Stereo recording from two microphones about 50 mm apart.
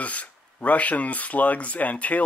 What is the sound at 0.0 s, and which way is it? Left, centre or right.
Speech, left.